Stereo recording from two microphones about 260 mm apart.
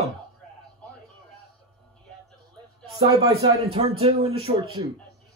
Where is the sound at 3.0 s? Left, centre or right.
Centre.